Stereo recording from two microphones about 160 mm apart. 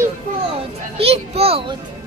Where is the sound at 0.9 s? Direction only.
40° right (ahead or behind).